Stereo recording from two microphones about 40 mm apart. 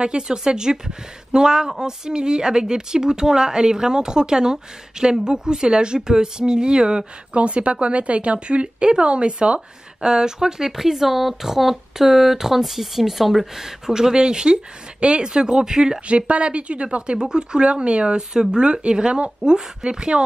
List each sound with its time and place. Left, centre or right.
0.0 s speech: right
7.3 s speech: right
10.0 s speech: centre
16.1 s speech: right